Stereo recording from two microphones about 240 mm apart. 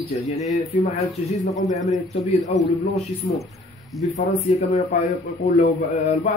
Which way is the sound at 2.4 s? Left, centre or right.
Left.